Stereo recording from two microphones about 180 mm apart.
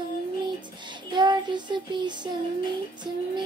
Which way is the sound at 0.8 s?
25° right (ahead or behind).